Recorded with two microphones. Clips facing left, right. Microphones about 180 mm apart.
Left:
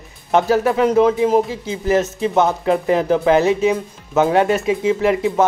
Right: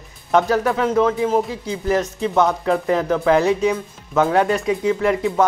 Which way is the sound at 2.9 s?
25° left (ahead or behind).